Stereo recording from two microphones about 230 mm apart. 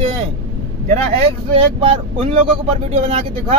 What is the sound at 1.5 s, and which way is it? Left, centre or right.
Speech, right.